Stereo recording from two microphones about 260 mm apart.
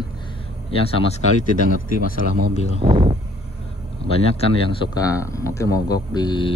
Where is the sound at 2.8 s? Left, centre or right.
Centre.